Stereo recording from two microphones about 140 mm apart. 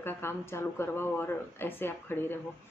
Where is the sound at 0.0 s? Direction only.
15° left (ahead or behind).